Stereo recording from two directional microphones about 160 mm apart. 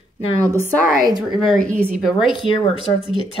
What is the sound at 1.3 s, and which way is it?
Speech, centre (ahead or behind).